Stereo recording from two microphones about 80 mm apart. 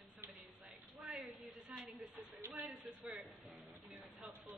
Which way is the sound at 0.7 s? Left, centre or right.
Centre.